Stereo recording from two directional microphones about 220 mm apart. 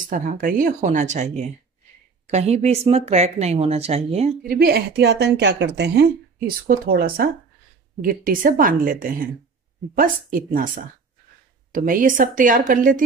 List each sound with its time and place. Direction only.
0.0 s speech: 35° right (ahead or behind)
4.4 s speech: 45° right (ahead or behind)